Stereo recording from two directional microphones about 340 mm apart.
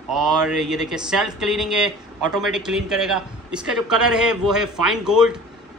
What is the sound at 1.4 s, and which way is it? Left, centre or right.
A man's voice, centre.